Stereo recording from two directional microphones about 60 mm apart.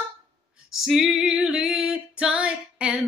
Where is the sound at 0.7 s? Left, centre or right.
Centre.